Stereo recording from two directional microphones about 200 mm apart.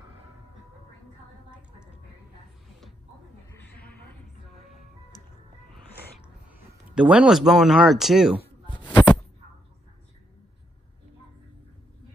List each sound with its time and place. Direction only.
3.7 s a sound: 5° left (ahead or behind)
7.0 s speech: 5° right (ahead or behind)
8.6 s heart sounds: 25° left (ahead or behind)